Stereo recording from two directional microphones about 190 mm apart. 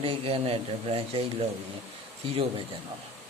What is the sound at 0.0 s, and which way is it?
Speech, 30° right (ahead or behind).